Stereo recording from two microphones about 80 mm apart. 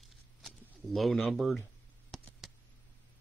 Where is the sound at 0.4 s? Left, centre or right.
Centre.